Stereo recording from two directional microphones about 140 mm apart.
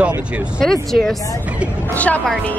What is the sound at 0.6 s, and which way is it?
Speech, centre (ahead or behind).